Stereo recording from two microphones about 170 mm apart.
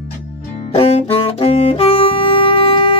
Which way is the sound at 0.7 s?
35° left (ahead or behind).